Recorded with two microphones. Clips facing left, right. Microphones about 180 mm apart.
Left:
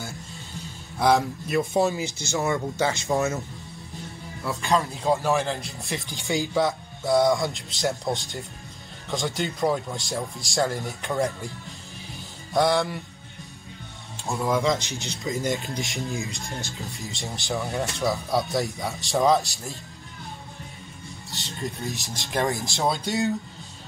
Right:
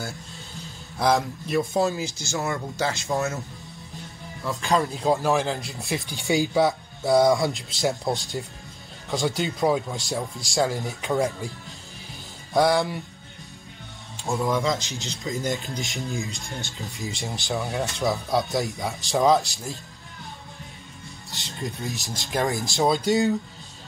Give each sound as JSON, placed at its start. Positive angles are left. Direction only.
{"t": 0.9, "sound": "speech", "side_deg": 0}
{"t": 2.3, "sound": "speech", "side_deg": 20}
{"t": 4.5, "sound": "speech", "side_deg": 0}
{"t": 6.2, "sound": "speech", "side_deg": -20}
{"t": 6.6, "sound": "speech", "side_deg": 0}
{"t": 12.5, "sound": "speech", "side_deg": 0}
{"t": 14.2, "sound": "speech", "side_deg": 0}
{"t": 21.3, "sound": "speech", "side_deg": 0}